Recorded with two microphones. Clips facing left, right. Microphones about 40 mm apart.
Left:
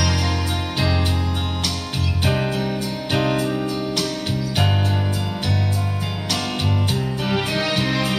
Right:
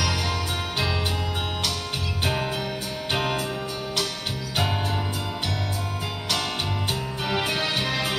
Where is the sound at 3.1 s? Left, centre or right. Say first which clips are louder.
Left 5 dB; centre.